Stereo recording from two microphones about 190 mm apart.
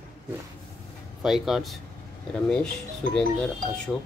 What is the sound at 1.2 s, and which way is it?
Speech, centre (ahead or behind).